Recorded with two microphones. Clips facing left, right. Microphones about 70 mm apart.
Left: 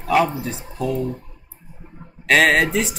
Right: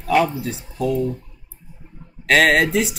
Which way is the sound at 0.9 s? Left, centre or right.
Left.